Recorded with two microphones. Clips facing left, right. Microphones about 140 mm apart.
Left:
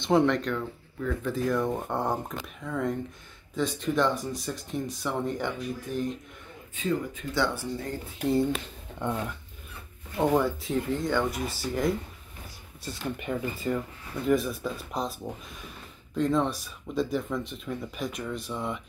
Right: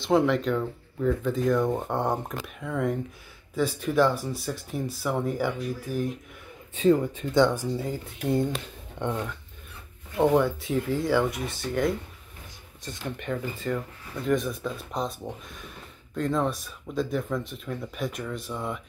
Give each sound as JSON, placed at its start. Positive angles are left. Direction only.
{"t": 0.0, "sound": "speech", "side_deg": -5}
{"t": 6.7, "sound": "speech", "side_deg": -30}
{"t": 7.3, "sound": "speech", "side_deg": -15}
{"t": 10.1, "sound": "speech", "side_deg": 0}